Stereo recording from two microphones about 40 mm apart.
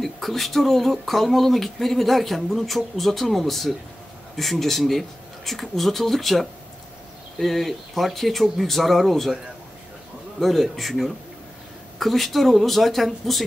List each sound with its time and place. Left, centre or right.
0.0 s speech: centre
10.4 s speech: centre